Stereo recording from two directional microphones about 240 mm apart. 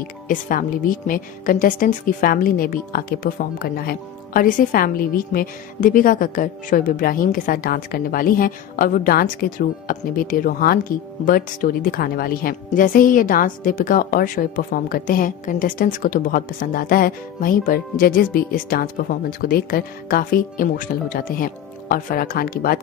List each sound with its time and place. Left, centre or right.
0.3 s a woman's voice: left